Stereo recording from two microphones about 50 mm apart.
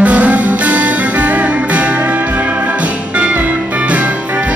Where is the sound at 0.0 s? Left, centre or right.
Right.